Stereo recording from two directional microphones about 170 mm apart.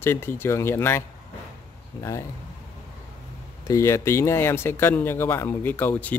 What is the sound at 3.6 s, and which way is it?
Speech, 15° left (ahead or behind).